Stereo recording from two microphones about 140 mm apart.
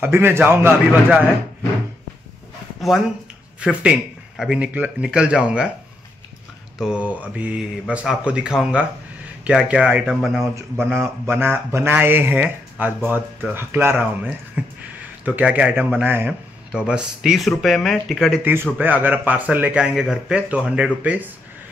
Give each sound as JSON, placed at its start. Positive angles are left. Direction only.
{"t": 0.0, "sound": "speech", "side_deg": -15}
{"t": 3.5, "sound": "speech", "side_deg": -10}
{"t": 6.8, "sound": "speech", "side_deg": -10}
{"t": 10.9, "sound": "speech", "side_deg": -15}
{"t": 18.4, "sound": "speech", "side_deg": -15}